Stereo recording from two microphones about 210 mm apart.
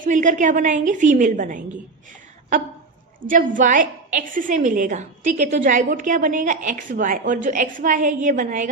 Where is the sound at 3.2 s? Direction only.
40° right (ahead or behind).